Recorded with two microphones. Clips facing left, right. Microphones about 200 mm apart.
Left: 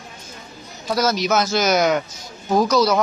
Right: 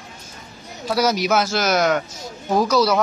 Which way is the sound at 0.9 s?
10° right (ahead or behind).